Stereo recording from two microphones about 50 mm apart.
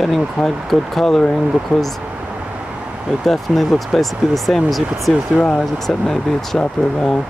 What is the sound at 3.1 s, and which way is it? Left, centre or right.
Speech, centre.